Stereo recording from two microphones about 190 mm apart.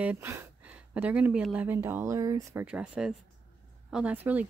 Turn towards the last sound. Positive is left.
turn(degrees=-10)  # may be behind; listen again after turning